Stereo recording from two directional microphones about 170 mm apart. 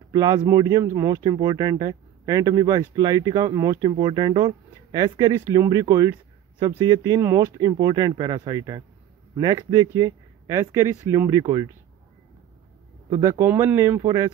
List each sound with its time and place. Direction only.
0.1 s speech: 20° right (ahead or behind)
13.1 s speech: 20° right (ahead or behind)